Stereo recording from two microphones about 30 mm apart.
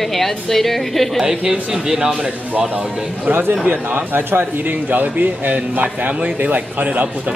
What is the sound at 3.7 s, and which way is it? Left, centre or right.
Speech, right.